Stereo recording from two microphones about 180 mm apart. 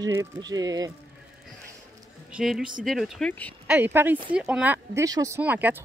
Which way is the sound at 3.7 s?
10° right (ahead or behind).